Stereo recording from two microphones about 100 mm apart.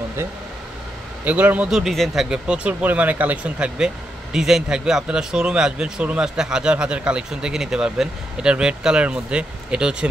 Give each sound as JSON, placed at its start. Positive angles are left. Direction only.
{"t": 1.2, "sound": "speech", "side_deg": -15}
{"t": 1.7, "sound": "speech", "side_deg": 0}